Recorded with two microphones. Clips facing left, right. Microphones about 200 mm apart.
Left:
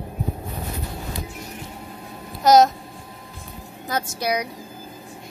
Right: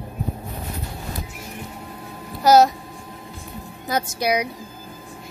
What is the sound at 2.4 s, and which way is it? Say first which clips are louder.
Speech: even; 5° right (ahead or behind).